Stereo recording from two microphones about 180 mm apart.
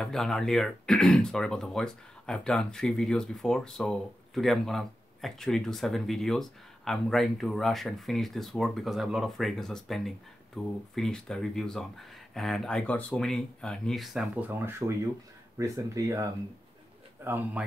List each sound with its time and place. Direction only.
0.0 s speech: centre (ahead or behind)